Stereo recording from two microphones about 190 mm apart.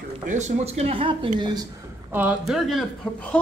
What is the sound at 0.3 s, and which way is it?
Speech, 35° right (ahead or behind).